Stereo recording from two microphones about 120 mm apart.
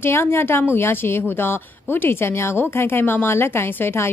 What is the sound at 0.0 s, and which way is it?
A woman's voice, 20° left (ahead or behind).